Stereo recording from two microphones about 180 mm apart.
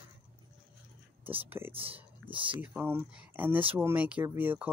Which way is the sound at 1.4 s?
10° right (ahead or behind).